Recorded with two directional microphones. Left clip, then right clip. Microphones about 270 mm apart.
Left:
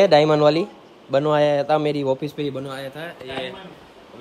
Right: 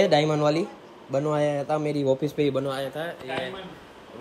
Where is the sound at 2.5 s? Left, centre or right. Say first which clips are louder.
Right 3 dB; centre.